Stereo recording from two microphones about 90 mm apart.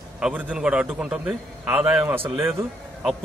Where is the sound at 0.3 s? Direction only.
15° right (ahead or behind).